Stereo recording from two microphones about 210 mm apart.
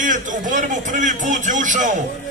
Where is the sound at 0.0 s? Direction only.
40° right (ahead or behind).